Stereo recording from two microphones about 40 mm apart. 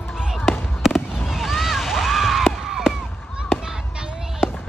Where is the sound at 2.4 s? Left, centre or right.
Centre.